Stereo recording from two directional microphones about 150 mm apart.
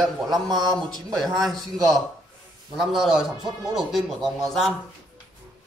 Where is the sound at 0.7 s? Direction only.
5° left (ahead or behind).